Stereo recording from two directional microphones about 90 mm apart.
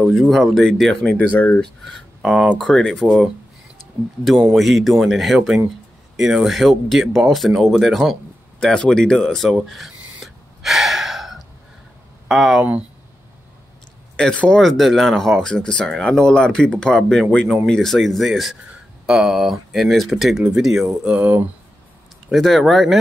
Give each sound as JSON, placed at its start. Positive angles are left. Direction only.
{"t": 0.1, "sound": "speech", "side_deg": 0}
{"t": 1.0, "sound": "speech", "side_deg": 15}
{"t": 1.6, "sound": "speech", "side_deg": 0}
{"t": 4.6, "sound": "speech", "side_deg": 0}
{"t": 9.7, "sound": "gasp", "side_deg": 0}
{"t": 12.3, "sound": "speech", "side_deg": -5}
{"t": 14.1, "sound": "speech", "side_deg": 15}
{"t": 14.6, "sound": "speech", "side_deg": 0}
{"t": 22.3, "sound": "speech", "side_deg": 0}